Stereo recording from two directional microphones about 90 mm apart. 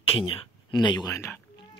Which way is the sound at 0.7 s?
50° left (ahead or behind).